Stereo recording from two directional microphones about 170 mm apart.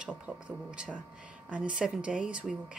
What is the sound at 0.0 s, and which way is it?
Speech, 5° right (ahead or behind).